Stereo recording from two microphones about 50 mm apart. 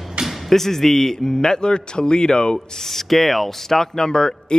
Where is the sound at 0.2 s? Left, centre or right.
Centre.